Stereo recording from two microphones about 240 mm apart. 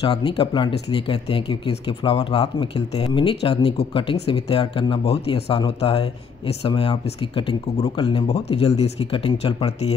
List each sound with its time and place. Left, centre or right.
0.0 s speech: centre